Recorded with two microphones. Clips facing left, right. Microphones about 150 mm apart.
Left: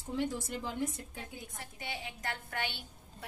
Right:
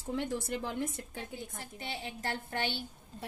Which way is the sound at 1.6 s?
30° right (ahead or behind).